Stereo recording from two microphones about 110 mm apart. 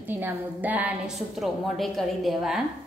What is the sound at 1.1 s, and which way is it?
A woman's voice, centre (ahead or behind).